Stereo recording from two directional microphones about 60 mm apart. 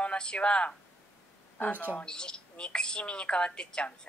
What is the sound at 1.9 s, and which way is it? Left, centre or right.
A woman's voice, centre.